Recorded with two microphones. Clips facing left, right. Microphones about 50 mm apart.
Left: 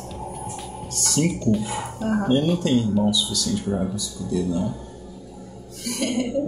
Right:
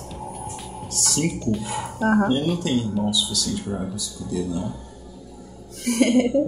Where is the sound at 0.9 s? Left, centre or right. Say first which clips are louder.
Left 2 dB; centre.